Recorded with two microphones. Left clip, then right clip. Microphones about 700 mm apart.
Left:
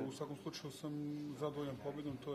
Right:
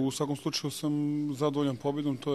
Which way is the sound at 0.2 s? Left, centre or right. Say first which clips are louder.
Right 14 dB; right.